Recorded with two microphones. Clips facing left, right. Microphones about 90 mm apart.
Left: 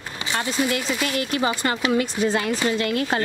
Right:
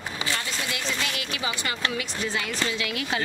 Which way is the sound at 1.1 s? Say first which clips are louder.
Left 8 dB; 45° left (ahead or behind).